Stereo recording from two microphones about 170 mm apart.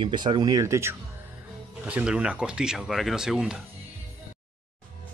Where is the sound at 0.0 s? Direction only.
25° right (ahead or behind); by 3.6 s 5° right (ahead or behind).